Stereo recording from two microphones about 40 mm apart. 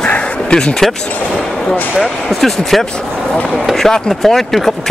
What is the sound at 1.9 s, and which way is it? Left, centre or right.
Speech, centre.